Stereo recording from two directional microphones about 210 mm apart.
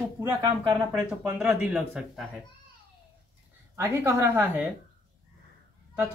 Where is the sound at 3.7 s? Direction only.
10° right (ahead or behind).